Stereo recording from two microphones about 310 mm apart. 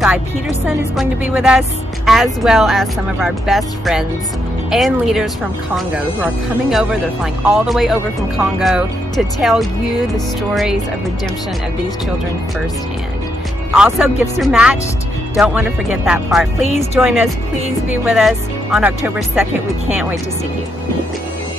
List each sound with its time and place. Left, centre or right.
0.7 s speech: centre
13.7 s speech: centre